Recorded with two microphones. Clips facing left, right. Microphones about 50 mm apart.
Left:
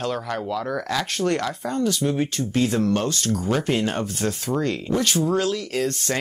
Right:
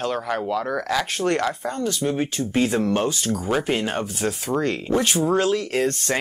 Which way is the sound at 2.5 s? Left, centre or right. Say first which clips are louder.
Right 1 dB; centre.